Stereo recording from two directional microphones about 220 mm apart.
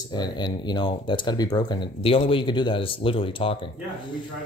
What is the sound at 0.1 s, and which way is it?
Speech, 20° left (ahead or behind).